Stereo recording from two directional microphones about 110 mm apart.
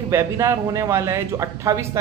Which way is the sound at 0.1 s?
25° right (ahead or behind).